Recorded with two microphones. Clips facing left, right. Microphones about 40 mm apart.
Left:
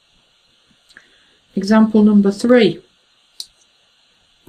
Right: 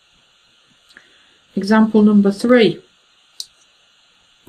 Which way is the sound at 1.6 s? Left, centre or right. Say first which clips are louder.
Even; centre.